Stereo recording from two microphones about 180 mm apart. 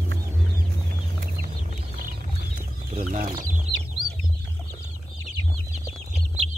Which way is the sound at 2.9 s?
45° right (ahead or behind).